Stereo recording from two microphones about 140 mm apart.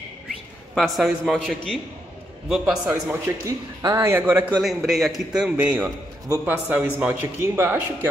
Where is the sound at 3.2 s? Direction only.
20° right (ahead or behind).